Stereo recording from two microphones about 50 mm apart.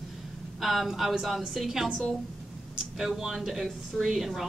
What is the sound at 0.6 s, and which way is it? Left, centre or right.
A woman's voice, centre.